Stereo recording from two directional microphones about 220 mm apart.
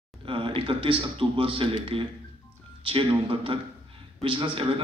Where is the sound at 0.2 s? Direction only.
25° right (ahead or behind).